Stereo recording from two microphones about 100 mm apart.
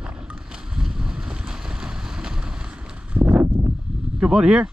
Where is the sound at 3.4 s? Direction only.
25° right (ahead or behind).